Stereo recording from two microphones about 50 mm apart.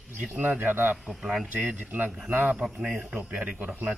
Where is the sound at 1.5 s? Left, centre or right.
Right.